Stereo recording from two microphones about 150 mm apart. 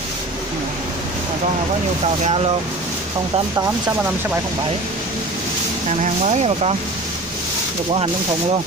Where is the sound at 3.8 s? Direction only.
10° right (ahead or behind).